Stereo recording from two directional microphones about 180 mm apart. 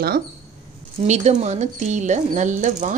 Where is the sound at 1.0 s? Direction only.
40° right (ahead or behind).